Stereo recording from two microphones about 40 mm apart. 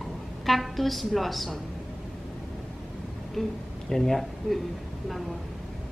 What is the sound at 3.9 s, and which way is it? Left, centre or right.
Speech, centre.